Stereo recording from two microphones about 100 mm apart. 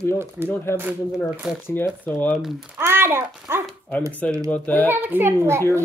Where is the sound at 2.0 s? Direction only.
20° left (ahead or behind).